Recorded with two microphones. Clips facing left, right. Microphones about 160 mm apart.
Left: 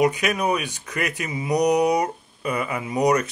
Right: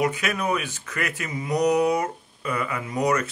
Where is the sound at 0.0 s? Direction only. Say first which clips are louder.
Left 4 dB; 15° left (ahead or behind).